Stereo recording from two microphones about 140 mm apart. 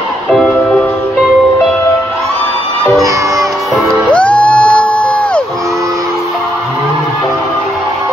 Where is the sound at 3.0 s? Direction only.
25° right (ahead or behind).